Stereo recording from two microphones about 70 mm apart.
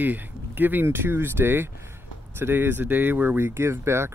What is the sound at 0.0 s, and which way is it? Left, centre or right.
Speech, right.